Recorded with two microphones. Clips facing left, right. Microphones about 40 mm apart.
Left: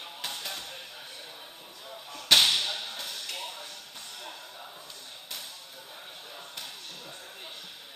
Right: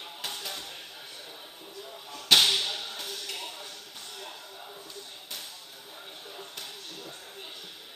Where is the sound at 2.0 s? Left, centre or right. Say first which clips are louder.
Even; left.